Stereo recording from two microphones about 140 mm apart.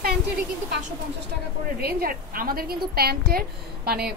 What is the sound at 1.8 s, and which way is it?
A woman's voice, 90° right.